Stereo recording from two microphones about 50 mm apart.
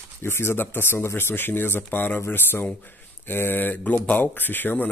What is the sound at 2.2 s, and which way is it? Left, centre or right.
Speech, left.